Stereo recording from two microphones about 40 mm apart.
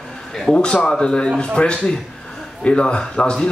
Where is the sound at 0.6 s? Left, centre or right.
Left.